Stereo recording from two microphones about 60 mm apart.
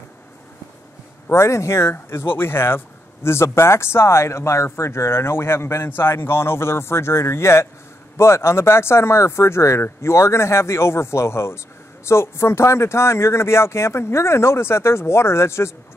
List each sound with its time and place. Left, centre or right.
1.3 s speech: left